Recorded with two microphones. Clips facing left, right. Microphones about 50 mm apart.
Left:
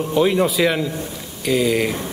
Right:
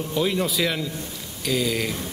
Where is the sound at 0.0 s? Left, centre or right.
Centre.